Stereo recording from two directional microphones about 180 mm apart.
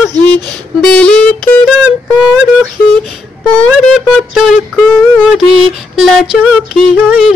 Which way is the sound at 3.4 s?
5° left (ahead or behind).